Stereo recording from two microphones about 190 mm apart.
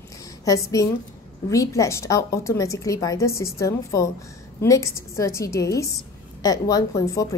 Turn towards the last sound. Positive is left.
turn(degrees=15)  # may be behind; listen again after turning